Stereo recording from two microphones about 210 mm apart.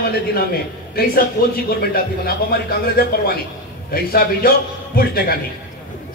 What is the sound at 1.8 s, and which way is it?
Speech, 45° left (ahead or behind).